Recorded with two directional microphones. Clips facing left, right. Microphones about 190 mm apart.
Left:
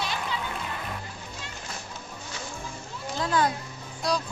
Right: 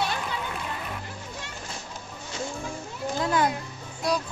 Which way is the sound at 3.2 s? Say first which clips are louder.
Right 1 dB; 20° right (ahead or behind).